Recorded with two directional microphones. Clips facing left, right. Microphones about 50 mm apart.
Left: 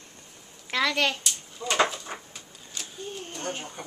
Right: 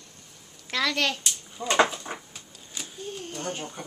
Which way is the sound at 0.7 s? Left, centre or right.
Centre.